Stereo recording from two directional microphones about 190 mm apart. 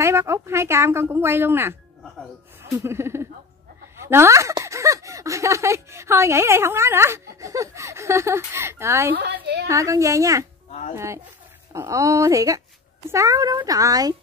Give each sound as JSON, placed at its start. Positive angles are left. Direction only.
{"t": 0.0, "sound": "speech", "side_deg": -15}
{"t": 9.1, "sound": "a woman's voice", "side_deg": -65}
{"t": 9.7, "sound": "speech", "side_deg": -15}
{"t": 11.7, "sound": "speech", "side_deg": -15}